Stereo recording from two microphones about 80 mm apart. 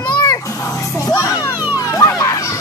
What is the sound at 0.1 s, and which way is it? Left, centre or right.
Music, left.